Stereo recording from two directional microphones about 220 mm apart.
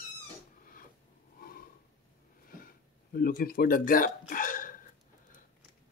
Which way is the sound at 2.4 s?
40° left (ahead or behind).